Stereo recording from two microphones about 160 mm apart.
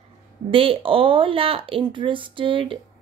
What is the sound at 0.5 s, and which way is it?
Speech, 35° right (ahead or behind).